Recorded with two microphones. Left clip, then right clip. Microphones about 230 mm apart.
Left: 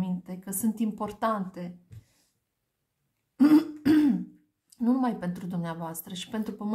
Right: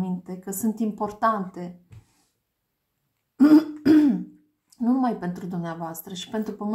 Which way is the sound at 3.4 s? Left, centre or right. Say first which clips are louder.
Right 4 dB; left.